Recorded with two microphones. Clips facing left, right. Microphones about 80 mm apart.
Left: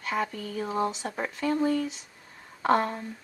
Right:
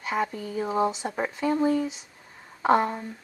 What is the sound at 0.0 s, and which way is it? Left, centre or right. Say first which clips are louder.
Speech: right 2 dB; centre.